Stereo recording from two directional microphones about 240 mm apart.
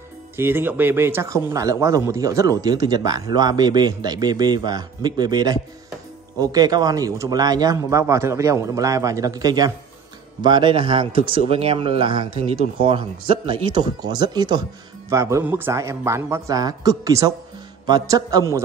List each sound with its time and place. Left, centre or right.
0.4 s a man's voice: centre